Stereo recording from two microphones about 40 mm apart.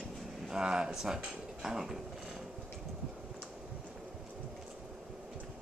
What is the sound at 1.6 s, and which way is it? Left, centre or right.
Speech, centre.